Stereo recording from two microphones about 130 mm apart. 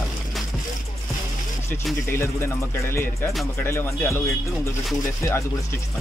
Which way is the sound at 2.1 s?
20° left (ahead or behind).